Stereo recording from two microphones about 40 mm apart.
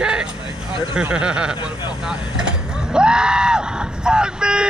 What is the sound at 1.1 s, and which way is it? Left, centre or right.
Speech, right.